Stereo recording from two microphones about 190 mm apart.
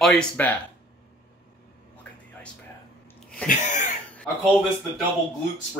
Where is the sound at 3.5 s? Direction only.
40° left (ahead or behind).